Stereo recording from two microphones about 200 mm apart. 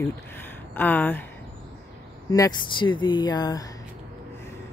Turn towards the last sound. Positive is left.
turn(degrees=20)  # may be behind; listen again after turning